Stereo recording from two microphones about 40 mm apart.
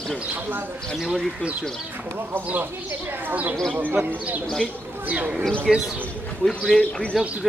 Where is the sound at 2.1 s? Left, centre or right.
Right.